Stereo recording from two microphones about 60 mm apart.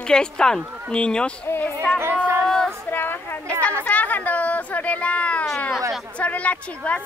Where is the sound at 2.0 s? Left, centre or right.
Right.